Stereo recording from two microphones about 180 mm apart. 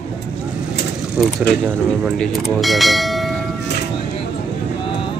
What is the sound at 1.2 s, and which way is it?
Speech, centre (ahead or behind).